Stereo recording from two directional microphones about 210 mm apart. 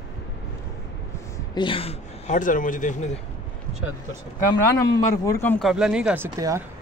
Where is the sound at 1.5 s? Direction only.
25° left (ahead or behind).